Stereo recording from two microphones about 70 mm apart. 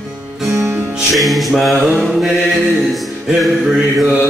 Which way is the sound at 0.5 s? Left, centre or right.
Right.